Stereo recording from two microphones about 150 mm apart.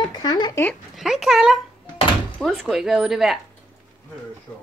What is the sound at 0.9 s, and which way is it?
A child's voice, 5° right (ahead or behind).